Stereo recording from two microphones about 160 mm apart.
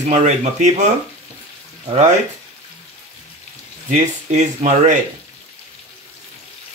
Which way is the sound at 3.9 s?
50° right (ahead or behind).